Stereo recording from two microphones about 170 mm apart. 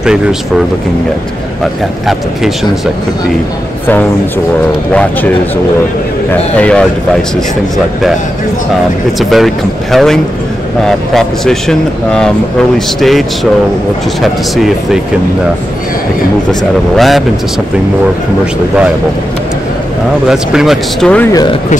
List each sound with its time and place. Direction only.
6.6 s speech: 5° left (ahead or behind)
9.2 s speech: centre (ahead or behind)
16.9 s speech: centre (ahead or behind)
20.2 s speech: centre (ahead or behind)
21.3 s speech: 25° left (ahead or behind)